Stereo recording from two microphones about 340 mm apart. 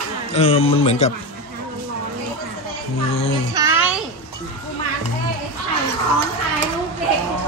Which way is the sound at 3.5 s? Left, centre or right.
Centre.